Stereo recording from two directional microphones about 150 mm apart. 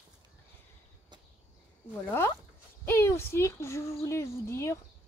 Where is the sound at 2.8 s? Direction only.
15° left (ahead or behind).